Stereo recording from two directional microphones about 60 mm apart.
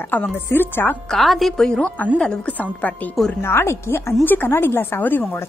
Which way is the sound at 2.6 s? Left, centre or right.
Left.